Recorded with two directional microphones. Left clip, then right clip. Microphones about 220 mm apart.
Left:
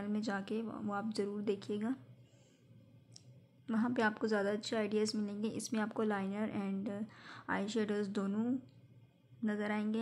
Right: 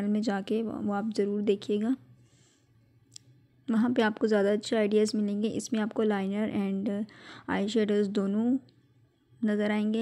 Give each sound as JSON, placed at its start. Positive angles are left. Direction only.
{"t": 0.0, "sound": "a woman's voice", "side_deg": -40}
{"t": 3.6, "sound": "a woman's voice", "side_deg": -40}